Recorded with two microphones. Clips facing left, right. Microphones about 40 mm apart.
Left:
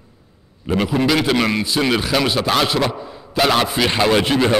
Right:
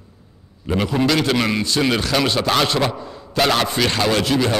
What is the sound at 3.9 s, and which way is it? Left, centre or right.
Speech, centre.